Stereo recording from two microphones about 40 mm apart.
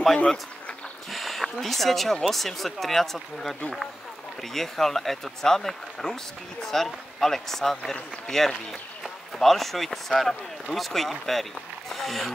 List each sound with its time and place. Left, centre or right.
1.1 s speech: centre